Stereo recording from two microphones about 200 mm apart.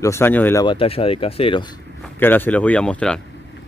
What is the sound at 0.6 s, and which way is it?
Speech, 25° left (ahead or behind).